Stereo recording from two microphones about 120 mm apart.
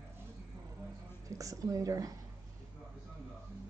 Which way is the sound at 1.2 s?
30° right (ahead or behind).